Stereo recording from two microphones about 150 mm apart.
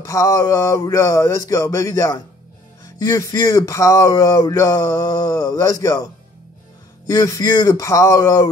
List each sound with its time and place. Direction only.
0.0 s speech: 20° left (ahead or behind)
7.1 s speech: 25° left (ahead or behind)